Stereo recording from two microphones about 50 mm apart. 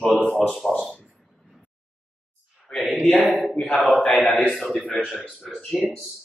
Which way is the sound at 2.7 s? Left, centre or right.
Centre.